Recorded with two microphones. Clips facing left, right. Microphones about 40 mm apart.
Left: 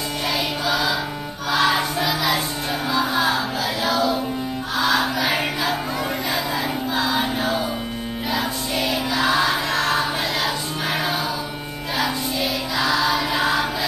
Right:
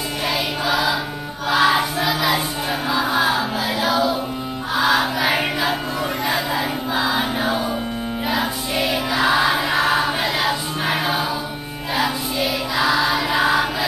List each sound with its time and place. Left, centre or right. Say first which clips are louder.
0.7 s music: right 2 dB; centre